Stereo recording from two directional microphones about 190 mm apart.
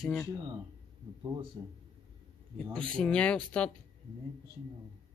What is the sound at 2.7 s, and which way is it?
Speech, 5° left (ahead or behind).